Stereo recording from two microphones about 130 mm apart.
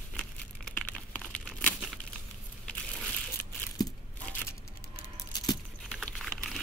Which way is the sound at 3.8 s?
30° left (ahead or behind).